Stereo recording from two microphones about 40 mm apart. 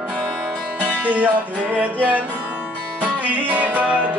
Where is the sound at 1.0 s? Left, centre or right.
Right.